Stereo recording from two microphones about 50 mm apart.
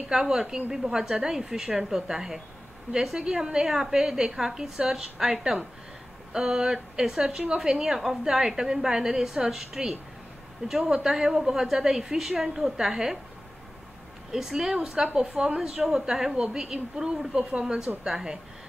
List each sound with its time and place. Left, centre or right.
0.1 s a woman's voice: centre
14.3 s a woman's voice: centre